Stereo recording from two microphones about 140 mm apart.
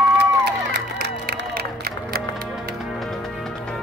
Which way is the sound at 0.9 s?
90° right.